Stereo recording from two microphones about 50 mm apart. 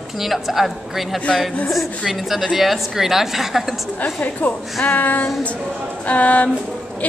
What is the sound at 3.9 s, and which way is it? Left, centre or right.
A woman's voice, left.